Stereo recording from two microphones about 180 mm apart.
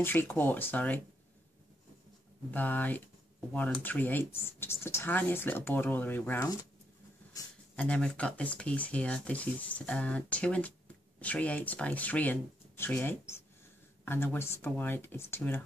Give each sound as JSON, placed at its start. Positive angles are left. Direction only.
{"t": 0.0, "sound": "speech", "side_deg": 10}
{"t": 2.5, "sound": "speech", "side_deg": 10}
{"t": 7.7, "sound": "speech", "side_deg": 5}